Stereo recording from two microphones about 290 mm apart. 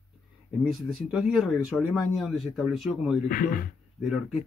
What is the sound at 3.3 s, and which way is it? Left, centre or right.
Speech, left.